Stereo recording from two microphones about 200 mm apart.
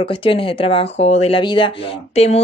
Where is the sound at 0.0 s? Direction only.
25° left (ahead or behind).